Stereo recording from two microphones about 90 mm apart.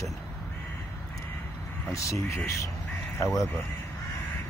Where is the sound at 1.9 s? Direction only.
35° left (ahead or behind).